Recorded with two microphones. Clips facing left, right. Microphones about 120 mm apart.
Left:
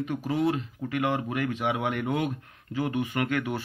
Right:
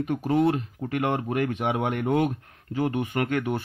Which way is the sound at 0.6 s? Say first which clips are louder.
Right 2 dB; 45° right (ahead or behind).